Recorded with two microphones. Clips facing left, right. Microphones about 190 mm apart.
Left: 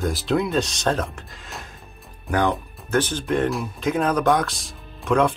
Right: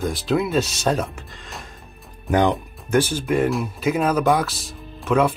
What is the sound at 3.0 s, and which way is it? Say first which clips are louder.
Speech: right 2 dB; 10° right (ahead or behind).